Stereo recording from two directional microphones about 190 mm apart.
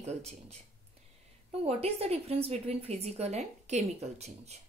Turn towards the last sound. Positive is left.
turn(degrees=-35)  # may be behind; listen again after turning